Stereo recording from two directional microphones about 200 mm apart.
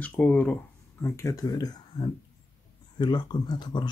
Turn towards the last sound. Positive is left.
turn(degrees=20)  # may be behind; listen again after turning